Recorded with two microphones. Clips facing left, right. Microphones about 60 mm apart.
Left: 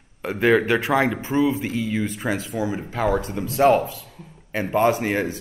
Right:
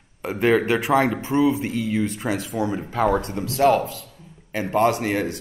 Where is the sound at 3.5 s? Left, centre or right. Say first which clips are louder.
Left 1 dB; centre.